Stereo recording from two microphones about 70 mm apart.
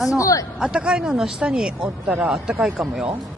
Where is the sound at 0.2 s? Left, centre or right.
Left.